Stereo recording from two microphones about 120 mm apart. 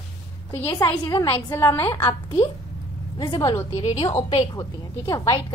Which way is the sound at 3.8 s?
60° left (ahead or behind).